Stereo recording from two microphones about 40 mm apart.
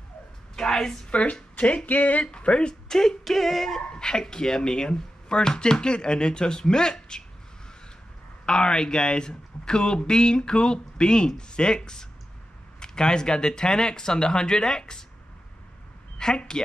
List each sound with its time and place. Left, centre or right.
0.6 s a sound: centre
1.1 s speech: left
2.3 s speech: left
2.9 s speech: centre
3.9 s dog: centre
4.2 s speech: centre
8.5 s speech: left
16.2 s a woman's voice: centre